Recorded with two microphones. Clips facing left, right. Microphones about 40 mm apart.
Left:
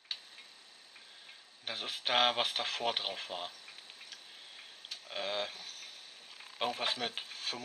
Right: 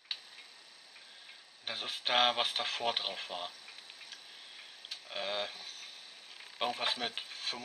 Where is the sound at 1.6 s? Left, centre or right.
Centre.